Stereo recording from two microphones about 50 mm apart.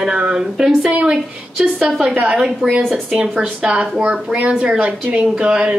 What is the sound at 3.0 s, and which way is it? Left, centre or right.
A woman's voice, centre.